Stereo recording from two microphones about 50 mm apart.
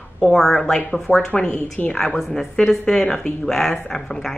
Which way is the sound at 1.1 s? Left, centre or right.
Left.